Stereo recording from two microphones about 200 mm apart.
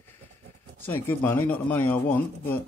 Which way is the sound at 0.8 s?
10° left (ahead or behind).